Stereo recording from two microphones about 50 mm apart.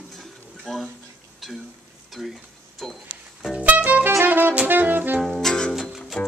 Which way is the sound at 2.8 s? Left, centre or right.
Centre.